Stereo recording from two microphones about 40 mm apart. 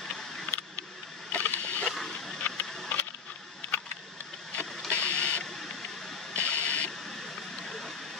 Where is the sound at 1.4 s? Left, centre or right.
Left.